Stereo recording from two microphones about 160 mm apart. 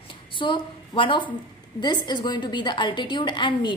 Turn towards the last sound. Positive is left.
turn(degrees=30)  # may be behind; listen again after turning